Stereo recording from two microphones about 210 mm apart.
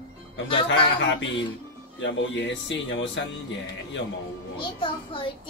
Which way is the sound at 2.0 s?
60° left (ahead or behind).